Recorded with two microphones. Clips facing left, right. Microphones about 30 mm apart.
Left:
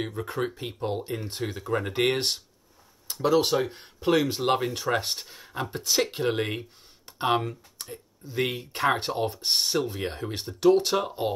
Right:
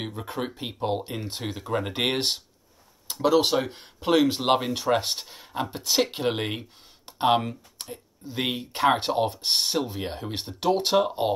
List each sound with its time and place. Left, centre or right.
0.0 s speech: centre; by 6.6 s right
7.2 s speech: centre
7.4 s speech: right
9.8 s speech: centre
10.3 s speech: right